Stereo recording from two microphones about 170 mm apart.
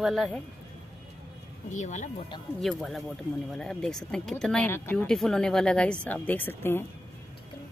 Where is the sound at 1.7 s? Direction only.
45° left (ahead or behind).